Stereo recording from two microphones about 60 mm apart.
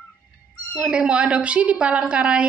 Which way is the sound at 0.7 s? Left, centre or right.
Centre.